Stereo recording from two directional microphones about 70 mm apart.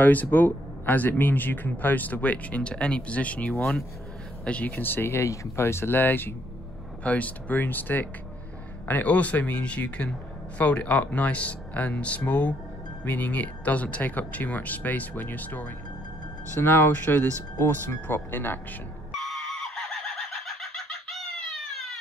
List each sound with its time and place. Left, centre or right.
0.0 s speech: left
5.2 s speech: left
19.1 s a sound: centre